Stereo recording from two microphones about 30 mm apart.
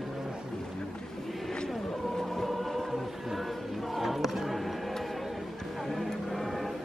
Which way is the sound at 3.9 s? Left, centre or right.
Centre.